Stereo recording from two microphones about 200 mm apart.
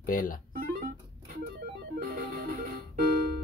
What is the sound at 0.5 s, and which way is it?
Music, 40° right (ahead or behind).